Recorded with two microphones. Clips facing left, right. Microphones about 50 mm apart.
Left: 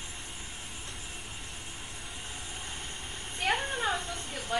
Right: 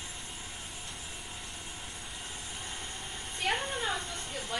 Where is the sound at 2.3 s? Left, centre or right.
Left.